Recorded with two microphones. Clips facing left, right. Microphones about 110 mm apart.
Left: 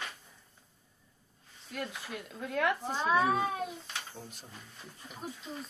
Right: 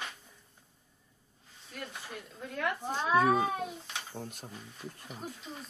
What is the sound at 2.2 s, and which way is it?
Speech, 80° left.